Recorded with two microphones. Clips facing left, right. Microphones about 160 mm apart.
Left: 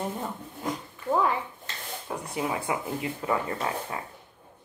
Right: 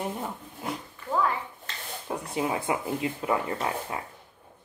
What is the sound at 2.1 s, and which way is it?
Speech, 20° right (ahead or behind).